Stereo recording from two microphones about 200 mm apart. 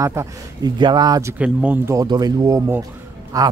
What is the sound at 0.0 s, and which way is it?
A man's voice, 15° right (ahead or behind).